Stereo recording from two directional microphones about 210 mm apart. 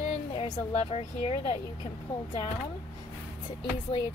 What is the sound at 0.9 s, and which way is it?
Speech, 30° left (ahead or behind).